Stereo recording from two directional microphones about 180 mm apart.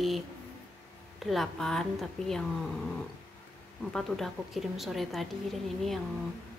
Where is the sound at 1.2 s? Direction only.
Centre (ahead or behind).